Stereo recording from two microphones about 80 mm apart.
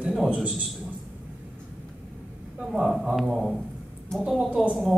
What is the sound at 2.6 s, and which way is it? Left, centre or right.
Speech, centre.